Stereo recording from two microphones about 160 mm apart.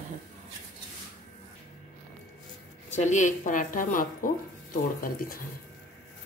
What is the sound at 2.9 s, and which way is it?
Speech, 50° left (ahead or behind).